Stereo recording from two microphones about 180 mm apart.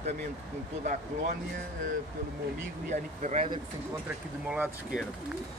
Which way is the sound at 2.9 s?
40° right (ahead or behind).